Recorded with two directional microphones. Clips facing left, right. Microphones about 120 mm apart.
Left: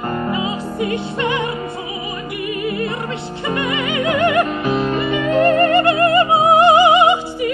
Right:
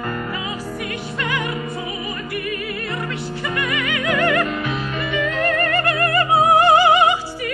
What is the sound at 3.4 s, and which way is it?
Music, 25° left (ahead or behind).